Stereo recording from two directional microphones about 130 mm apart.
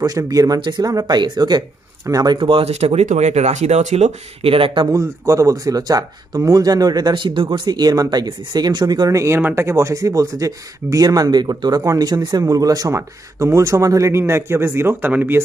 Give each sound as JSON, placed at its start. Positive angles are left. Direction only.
{"t": 0.2, "sound": "speech", "side_deg": -30}
{"t": 2.3, "sound": "speech", "side_deg": -40}
{"t": 4.9, "sound": "speech", "side_deg": -25}